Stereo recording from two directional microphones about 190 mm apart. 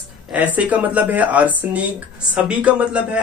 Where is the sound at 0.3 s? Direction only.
5° right (ahead or behind).